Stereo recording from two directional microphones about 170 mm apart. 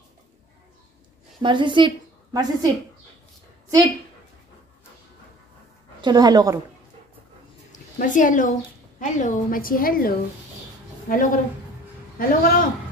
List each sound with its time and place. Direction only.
1.4 s a woman's voice: 30° right (ahead or behind)
5.9 s a woman's voice: 25° right (ahead or behind)
8.0 s a woman's voice: 50° left (ahead or behind)